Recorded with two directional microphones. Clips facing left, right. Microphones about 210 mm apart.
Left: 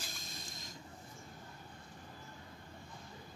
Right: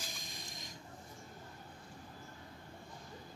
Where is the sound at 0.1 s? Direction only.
15° right (ahead or behind).